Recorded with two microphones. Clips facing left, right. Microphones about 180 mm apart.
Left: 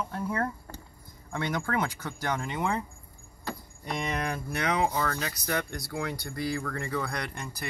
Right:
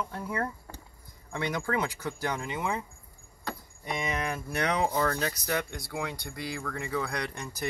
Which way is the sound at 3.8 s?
5° right (ahead or behind).